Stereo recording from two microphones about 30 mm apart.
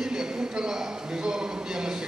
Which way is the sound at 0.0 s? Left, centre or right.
Right.